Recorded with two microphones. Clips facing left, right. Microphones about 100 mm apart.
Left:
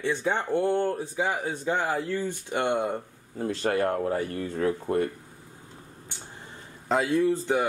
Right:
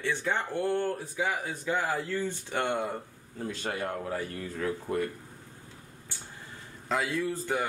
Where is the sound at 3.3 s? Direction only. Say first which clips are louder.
Left 8 dB; 40° left (ahead or behind).